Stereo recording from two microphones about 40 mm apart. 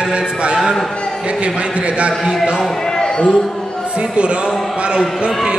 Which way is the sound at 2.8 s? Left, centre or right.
Centre.